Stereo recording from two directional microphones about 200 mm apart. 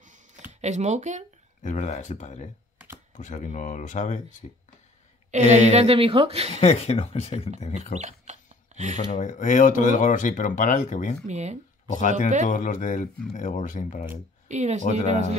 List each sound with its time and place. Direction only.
0.5 s speech: 35° right (ahead or behind)
1.6 s speech: 35° left (ahead or behind)
5.3 s a woman's voice: 35° right (ahead or behind)
6.6 s speech: 30° left (ahead or behind)
8.0 s a sound: 35° right (ahead or behind)
9.2 s speech: 40° left (ahead or behind)
11.2 s a woman's voice: 35° right (ahead or behind)
11.9 s speech: 40° left (ahead or behind)
14.5 s a woman's voice: 35° right (ahead or behind)